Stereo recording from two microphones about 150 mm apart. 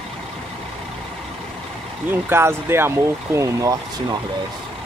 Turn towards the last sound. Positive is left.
turn(degrees=-20)  # may be behind; listen again after turning